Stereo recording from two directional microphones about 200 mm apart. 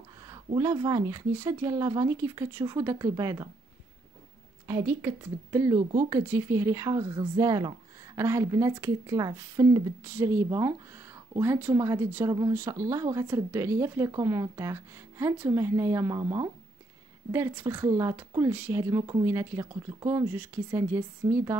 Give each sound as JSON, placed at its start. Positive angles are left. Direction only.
{"t": 0.3, "sound": "speech", "side_deg": -15}
{"t": 4.6, "sound": "speech", "side_deg": -15}